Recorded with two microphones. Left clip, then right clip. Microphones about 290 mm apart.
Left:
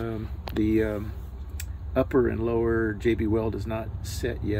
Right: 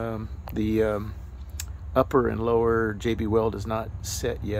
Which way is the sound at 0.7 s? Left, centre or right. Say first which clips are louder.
Right 2 dB; centre.